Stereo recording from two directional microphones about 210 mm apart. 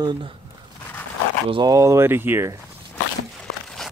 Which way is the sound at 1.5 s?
20° right (ahead or behind).